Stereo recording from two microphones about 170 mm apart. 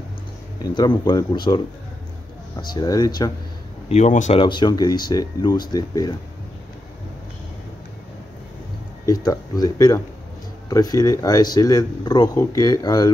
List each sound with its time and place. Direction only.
0.7 s speech: 25° left (ahead or behind)
3.9 s speech: 45° left (ahead or behind)
4.4 s speech: 25° left (ahead or behind)
9.0 s speech: 20° left (ahead or behind)